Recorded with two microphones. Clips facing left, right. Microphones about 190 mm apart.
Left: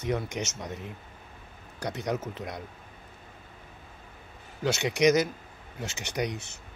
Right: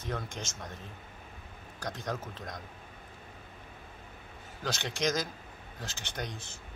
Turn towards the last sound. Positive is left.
turn(degrees=70)  # may be behind; listen again after turning